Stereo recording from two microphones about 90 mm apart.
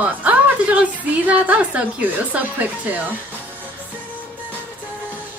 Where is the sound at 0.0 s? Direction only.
15° right (ahead or behind).